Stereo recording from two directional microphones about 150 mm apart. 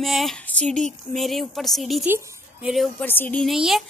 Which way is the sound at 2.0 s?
10° right (ahead or behind).